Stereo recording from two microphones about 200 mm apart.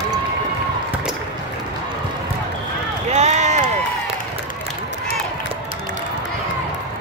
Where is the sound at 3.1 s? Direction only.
35° right (ahead or behind).